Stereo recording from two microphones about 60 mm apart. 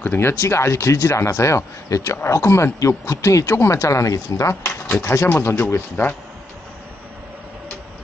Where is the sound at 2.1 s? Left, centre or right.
Left.